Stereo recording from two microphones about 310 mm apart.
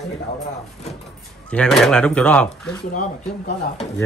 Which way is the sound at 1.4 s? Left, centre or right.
Centre.